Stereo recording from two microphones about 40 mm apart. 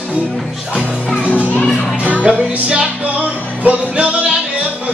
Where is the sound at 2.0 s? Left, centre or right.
Right.